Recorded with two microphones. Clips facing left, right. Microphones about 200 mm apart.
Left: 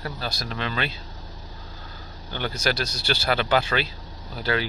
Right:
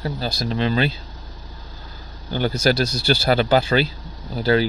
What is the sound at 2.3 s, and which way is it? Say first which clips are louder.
Speech: right 7 dB; 40° right (ahead or behind).